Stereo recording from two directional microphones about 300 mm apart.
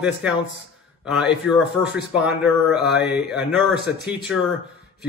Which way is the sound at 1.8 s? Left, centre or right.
Centre.